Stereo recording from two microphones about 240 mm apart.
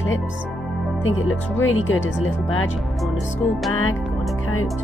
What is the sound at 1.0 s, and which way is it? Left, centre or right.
Speech, left.